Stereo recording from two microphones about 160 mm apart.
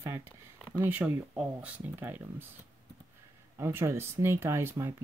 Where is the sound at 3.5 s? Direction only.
15° right (ahead or behind).